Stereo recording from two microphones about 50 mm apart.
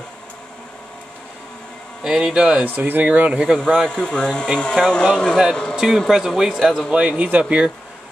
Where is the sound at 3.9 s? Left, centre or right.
Centre.